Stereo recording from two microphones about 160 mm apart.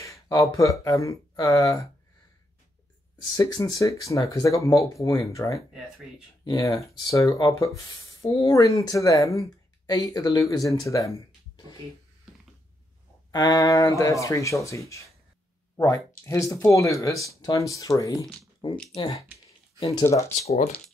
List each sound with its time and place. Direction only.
0.0 s speech: 20° left (ahead or behind)
3.3 s speech: 20° left (ahead or behind)
13.3 s speech: 25° left (ahead or behind)
20.4 s speech: 50° left (ahead or behind)